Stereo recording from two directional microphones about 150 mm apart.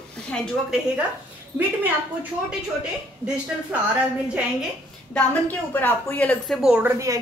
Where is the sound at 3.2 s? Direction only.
5° right (ahead or behind).